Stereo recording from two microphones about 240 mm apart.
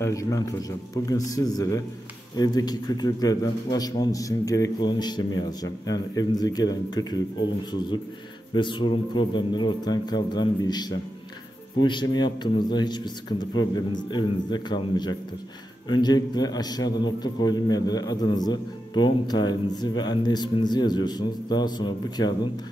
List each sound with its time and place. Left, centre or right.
0.0 s a man's voice: centre
8.5 s a man's voice: centre